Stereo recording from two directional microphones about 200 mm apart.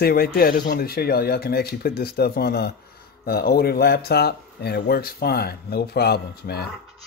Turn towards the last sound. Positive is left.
turn(degrees=55)  # may be behind; listen again after turning